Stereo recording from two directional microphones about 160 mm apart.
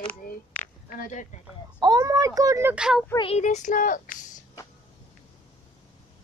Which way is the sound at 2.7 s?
5° right (ahead or behind).